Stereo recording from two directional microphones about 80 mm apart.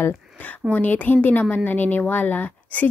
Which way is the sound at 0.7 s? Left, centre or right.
Left.